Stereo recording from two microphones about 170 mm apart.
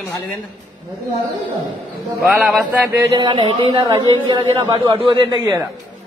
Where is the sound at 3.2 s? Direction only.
30° right (ahead or behind).